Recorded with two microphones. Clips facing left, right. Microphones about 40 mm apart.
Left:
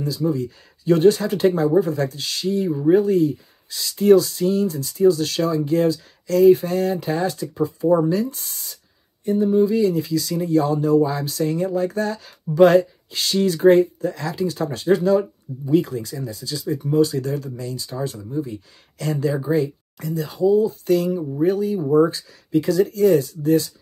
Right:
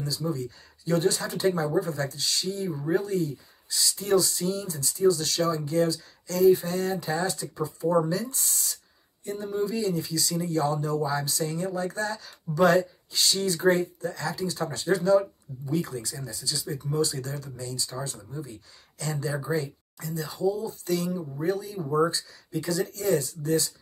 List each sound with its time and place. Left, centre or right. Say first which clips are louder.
0.0 s speech: left 8 dB; left
21.2 s speech: left 11 dB; left
21.5 s speech: left 8 dB; left